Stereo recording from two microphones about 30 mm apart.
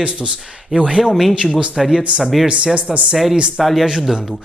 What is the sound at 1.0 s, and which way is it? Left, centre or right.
Speech, centre.